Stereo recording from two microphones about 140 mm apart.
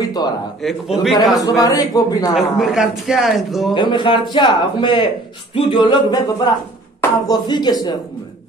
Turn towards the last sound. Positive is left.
turn(degrees=30)  # may be behind; listen again after turning